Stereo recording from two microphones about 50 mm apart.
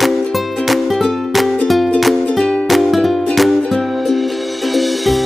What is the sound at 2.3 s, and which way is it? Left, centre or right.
Music, centre.